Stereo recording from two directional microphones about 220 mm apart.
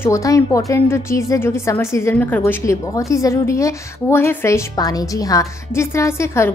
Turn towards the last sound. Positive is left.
turn(degrees=10)  # may be behind; listen again after turning